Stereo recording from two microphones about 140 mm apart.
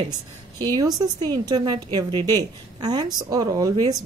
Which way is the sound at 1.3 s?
30° right (ahead or behind).